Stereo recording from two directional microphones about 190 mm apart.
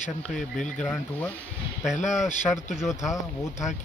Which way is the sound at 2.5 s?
Centre (ahead or behind).